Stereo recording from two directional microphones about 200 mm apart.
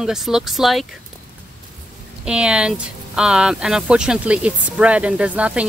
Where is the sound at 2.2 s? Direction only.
5° right (ahead or behind).